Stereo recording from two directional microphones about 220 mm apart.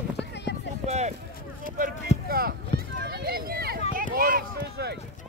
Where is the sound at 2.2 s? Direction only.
45° right (ahead or behind).